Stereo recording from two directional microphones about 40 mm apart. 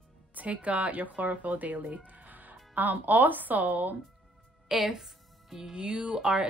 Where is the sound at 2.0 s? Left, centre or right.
Right.